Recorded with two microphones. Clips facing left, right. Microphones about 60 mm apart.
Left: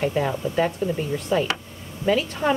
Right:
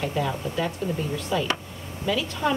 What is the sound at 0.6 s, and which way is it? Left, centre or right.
Speech, left.